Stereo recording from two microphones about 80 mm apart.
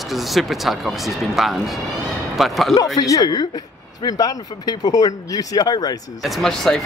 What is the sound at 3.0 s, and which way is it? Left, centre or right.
Speech, left.